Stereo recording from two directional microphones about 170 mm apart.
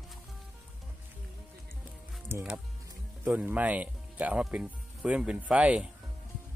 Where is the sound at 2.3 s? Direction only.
15° right (ahead or behind).